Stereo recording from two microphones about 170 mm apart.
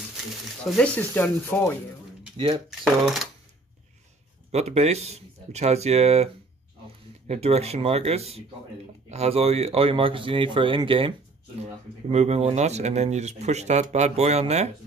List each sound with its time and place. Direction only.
0.7 s speech: 5° left (ahead or behind)
2.3 s speech: 30° right (ahead or behind)
2.8 s speech: centre (ahead or behind)
4.5 s speech: 40° right (ahead or behind)